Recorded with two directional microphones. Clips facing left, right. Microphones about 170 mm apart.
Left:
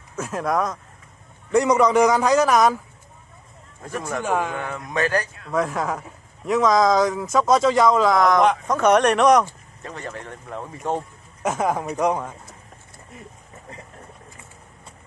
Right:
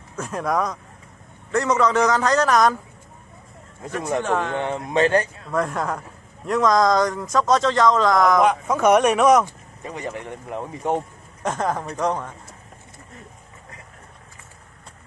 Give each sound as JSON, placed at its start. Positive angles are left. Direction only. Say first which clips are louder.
{"t": 0.1, "sound": "speech", "louder": "even", "side_deg": 0}
{"t": 1.5, "sound": "a man's voice", "louder": "left 3 dB", "side_deg": 15}
{"t": 4.2, "sound": "a man's voice", "louder": "left 2 dB", "side_deg": 5}
{"t": 4.6, "sound": "speech", "louder": "right 5 dB", "side_deg": -30}
{"t": 5.5, "sound": "a man's voice", "louder": "left 1 dB", "side_deg": 0}
{"t": 9.4, "sound": "speech", "louder": "even", "side_deg": -15}
{"t": 11.4, "sound": "a man's voice", "louder": "left 2 dB", "side_deg": 10}